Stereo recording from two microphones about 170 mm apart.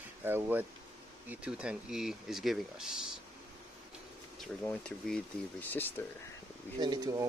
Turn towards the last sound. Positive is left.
turn(degrees=-20)  # may be behind; listen again after turning